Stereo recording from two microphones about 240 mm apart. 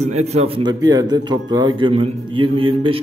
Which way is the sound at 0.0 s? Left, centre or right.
Right.